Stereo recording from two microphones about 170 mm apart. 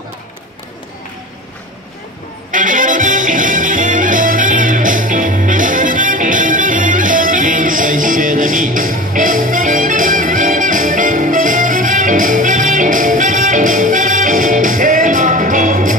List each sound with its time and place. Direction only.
2.5 s music: 50° right (ahead or behind)